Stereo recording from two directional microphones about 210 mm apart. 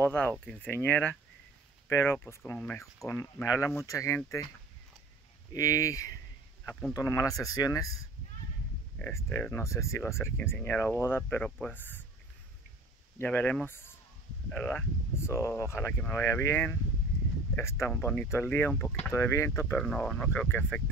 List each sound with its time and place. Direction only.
0.0 s speech: 5° left (ahead or behind)
5.5 s speech: 15° left (ahead or behind)
8.9 s speech: 10° left (ahead or behind)
13.2 s speech: 10° left (ahead or behind)